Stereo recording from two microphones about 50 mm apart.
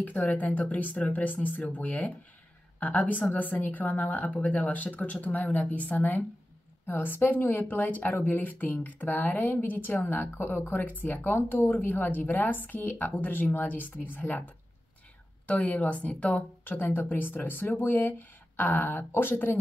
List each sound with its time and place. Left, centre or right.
0.0 s speech: left
15.4 s speech: left